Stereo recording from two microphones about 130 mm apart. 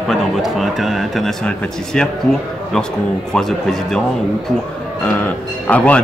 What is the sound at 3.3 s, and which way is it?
Speech, 5° left (ahead or behind).